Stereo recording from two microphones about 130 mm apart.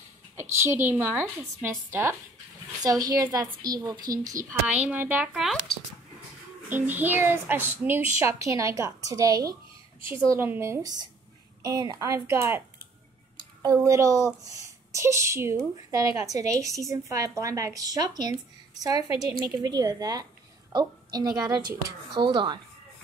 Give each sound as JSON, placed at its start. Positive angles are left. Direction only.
{"t": 0.4, "sound": "a woman's voice", "side_deg": -20}
{"t": 4.5, "sound": "a child's voice", "side_deg": -10}
{"t": 5.3, "sound": "speech", "side_deg": 0}
{"t": 6.7, "sound": "a child's voice", "side_deg": -15}